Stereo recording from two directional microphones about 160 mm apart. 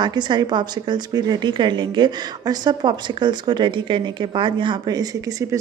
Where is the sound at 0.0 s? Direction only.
30° right (ahead or behind).